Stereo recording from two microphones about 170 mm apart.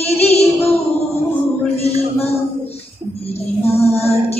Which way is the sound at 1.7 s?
35° left (ahead or behind).